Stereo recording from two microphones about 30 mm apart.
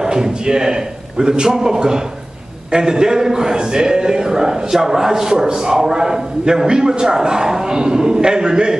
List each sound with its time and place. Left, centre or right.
0.0 s speech: right